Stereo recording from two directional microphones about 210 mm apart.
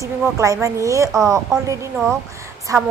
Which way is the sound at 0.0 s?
15° right (ahead or behind).